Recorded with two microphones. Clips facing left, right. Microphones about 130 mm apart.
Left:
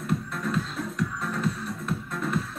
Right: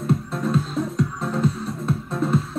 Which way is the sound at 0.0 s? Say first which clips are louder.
Right 6 dB; 25° right (ahead or behind).